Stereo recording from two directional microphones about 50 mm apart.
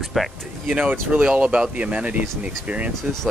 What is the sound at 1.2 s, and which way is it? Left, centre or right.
Speech, right.